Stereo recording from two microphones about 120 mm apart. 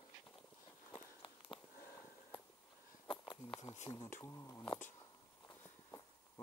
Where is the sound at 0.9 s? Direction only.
45° left (ahead or behind).